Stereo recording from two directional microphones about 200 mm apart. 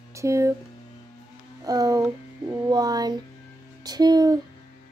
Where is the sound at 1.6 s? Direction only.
20° right (ahead or behind).